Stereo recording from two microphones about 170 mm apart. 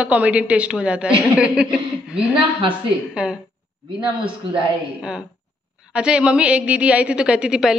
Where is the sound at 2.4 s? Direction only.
30° right (ahead or behind).